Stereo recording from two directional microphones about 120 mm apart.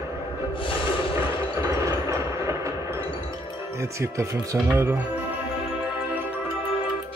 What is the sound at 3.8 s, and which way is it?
Speech, 25° right (ahead or behind).